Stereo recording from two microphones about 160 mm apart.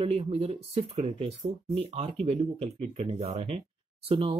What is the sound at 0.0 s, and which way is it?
Speech, 40° right (ahead or behind).